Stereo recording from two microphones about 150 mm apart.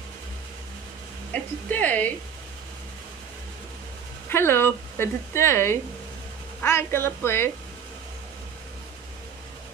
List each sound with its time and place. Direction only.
1.3 s speech: 10° left (ahead or behind)
4.3 s speech: 15° left (ahead or behind)